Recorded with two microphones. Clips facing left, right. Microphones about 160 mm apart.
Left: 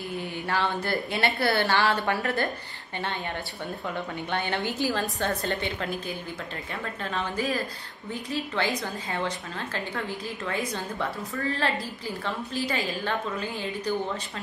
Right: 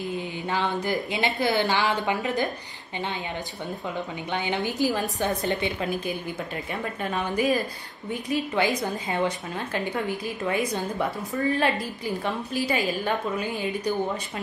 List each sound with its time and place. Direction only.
0.2 s speech: 15° right (ahead or behind)
4.3 s speech: 15° right (ahead or behind)